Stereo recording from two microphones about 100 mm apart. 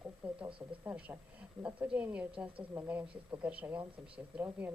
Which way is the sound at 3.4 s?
15° right (ahead or behind).